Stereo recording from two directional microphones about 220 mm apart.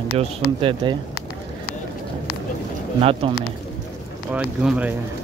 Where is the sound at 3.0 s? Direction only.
25° right (ahead or behind).